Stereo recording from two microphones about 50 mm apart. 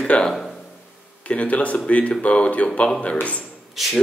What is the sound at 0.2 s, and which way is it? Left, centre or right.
Speech, centre.